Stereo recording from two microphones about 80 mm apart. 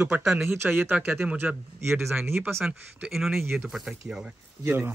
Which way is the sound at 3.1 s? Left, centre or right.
Centre.